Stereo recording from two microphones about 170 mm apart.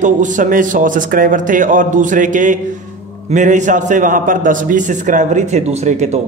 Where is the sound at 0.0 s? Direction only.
50° right (ahead or behind).